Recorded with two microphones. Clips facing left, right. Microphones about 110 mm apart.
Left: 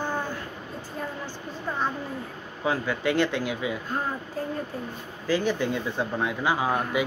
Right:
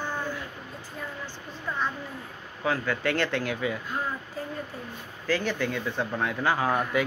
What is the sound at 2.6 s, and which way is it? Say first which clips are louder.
Speech: left 1 dB; 15° left (ahead or behind).